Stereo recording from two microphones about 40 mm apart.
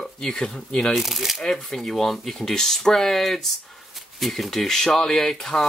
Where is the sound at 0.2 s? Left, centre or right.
Centre.